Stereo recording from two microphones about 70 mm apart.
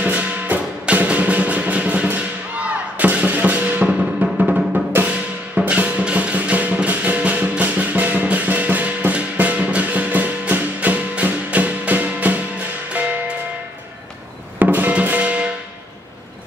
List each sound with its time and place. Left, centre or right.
0.0 s music: centre
14.6 s music: right